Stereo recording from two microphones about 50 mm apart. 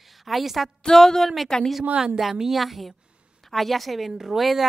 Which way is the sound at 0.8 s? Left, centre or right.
Centre.